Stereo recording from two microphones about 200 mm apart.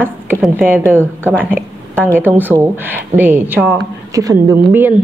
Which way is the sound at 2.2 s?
10° right (ahead or behind).